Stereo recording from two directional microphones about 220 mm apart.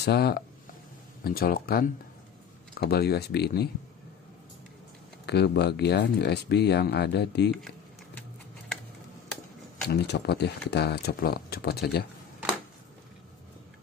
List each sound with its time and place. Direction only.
0.0 s speech: 45° left (ahead or behind)
5.2 s speech: 50° left (ahead or behind)
9.8 s speech: 50° left (ahead or behind)